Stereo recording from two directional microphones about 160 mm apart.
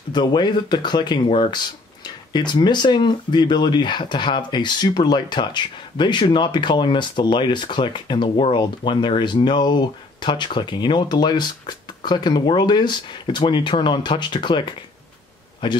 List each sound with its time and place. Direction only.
0.1 s speech: 25° left (ahead or behind)